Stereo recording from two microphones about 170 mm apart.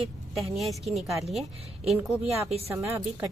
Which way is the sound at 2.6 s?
15° right (ahead or behind).